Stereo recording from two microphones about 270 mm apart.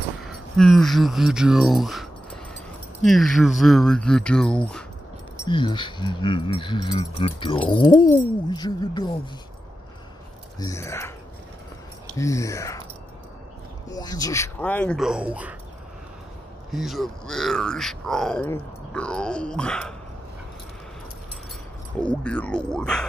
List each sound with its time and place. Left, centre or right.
0.2 s speech: centre
5.5 s speech: centre
10.6 s speech: centre
12.2 s speech: centre
13.8 s speech: centre
16.7 s speech: centre
22.2 s speech: centre